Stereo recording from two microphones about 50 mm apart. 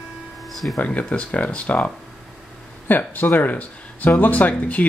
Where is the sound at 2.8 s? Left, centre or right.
Left.